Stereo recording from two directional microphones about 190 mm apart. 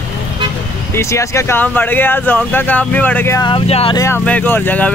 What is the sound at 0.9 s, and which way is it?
Speech, 15° left (ahead or behind).